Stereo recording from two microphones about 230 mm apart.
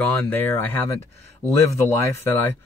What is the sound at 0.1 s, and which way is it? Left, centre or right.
Speech, centre.